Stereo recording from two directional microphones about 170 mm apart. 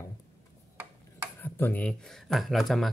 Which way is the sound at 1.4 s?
10° left (ahead or behind).